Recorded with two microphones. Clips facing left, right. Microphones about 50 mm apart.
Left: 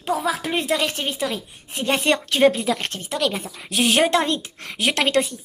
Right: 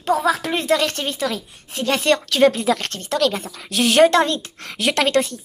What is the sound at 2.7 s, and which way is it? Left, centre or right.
Speech, centre.